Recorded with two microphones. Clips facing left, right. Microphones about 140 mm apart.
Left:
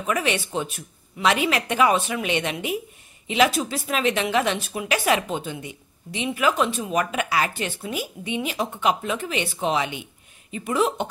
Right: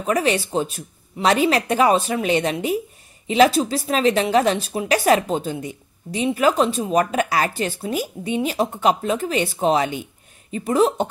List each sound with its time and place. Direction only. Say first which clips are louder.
0.0 s speech: right 4 dB; 35° right (ahead or behind)